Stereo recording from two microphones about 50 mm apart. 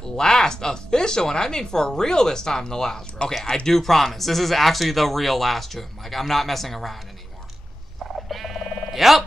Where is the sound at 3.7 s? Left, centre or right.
Centre.